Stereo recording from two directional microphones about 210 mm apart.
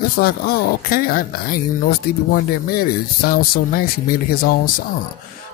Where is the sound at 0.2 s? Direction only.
45° left (ahead or behind).